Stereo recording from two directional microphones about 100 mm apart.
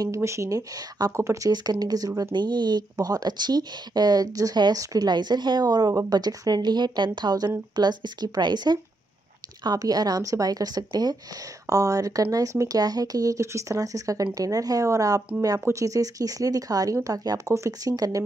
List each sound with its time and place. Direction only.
0.0 s speech: 30° right (ahead or behind)
1.5 s speech: 45° right (ahead or behind)